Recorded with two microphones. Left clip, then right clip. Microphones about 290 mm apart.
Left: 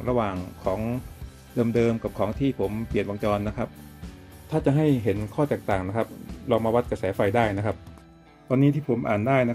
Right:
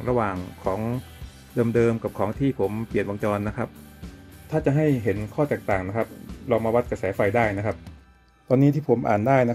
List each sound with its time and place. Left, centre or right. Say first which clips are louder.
0.0 s speech: right 1 dB; centre
8.5 s speech: right 3 dB; centre